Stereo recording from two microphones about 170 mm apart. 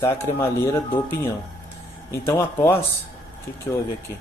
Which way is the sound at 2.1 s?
15° left (ahead or behind).